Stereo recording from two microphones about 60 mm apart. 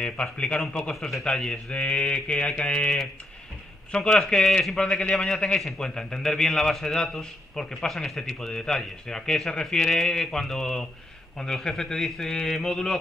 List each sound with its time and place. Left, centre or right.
0.0 s a man's voice: centre